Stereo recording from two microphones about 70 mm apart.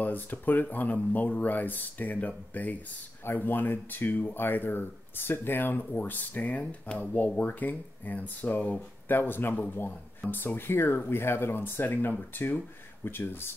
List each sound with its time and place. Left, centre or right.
0.0 s speech: left